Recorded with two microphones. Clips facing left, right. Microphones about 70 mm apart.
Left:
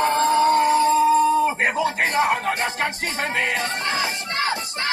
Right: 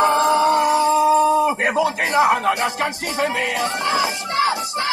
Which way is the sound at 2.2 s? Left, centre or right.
Right.